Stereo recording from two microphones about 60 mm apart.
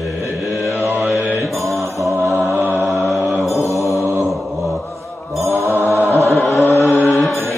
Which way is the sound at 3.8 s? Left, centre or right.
Left.